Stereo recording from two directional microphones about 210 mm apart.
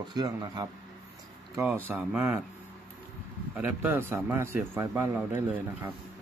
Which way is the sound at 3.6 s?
10° right (ahead or behind).